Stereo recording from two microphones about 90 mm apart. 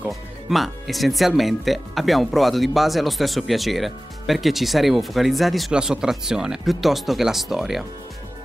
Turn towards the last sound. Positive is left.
turn(degrees=-5)  # may be behind; listen again after turning